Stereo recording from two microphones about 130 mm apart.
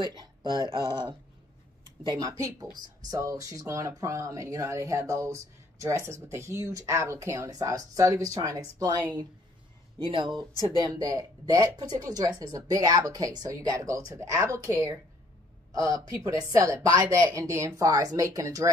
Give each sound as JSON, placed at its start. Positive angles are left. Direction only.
{"t": 0.0, "sound": "speech", "side_deg": -35}
{"t": 0.4, "sound": "speech", "side_deg": 30}
{"t": 0.7, "sound": "speech", "side_deg": -35}
{"t": 9.9, "sound": "speech", "side_deg": -45}
{"t": 10.8, "sound": "speech", "side_deg": -30}